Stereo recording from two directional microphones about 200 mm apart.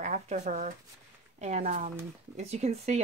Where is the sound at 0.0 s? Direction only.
35° right (ahead or behind).